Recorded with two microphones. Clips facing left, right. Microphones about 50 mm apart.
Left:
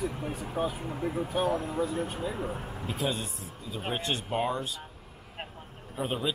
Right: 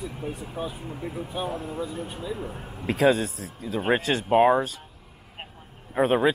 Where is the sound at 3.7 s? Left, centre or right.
Right.